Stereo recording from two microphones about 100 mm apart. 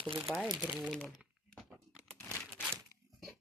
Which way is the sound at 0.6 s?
10° right (ahead or behind).